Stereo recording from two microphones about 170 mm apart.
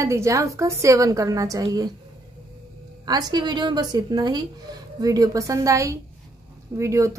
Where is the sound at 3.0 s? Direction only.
25° right (ahead or behind).